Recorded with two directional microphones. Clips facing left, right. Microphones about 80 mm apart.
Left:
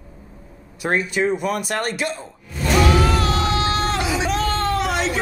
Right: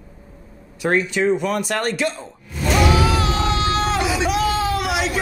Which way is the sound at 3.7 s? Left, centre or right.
Centre.